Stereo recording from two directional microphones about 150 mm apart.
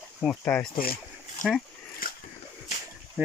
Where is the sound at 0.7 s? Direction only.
80° left.